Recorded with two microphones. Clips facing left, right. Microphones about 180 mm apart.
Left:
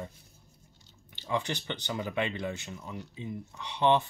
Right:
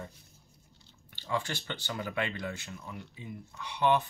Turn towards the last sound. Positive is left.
turn(degrees=25)  # may be behind; listen again after turning